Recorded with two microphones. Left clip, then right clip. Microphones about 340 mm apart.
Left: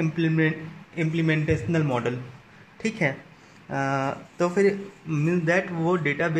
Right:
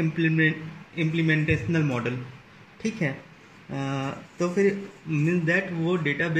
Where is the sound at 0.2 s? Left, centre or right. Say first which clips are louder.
Right 1 dB; centre.